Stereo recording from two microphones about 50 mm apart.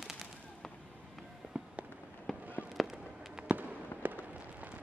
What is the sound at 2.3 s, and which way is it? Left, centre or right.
Fireworks, centre.